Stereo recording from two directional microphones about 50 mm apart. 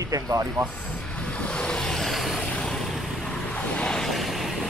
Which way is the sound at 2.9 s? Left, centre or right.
Centre.